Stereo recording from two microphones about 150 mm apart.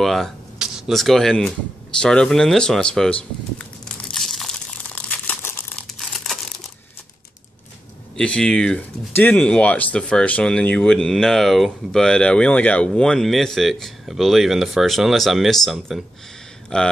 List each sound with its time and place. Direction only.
0.0 s speech: centre (ahead or behind)
4.1 s crumpling: centre (ahead or behind)
5.9 s crumpling: centre (ahead or behind)
8.2 s speech: 5° left (ahead or behind)